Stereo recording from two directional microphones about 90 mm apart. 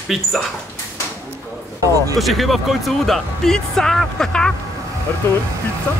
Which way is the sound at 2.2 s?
Centre (ahead or behind).